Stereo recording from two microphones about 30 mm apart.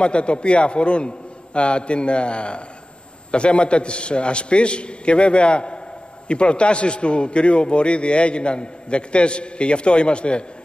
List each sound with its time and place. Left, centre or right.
0.0 s a man's voice: left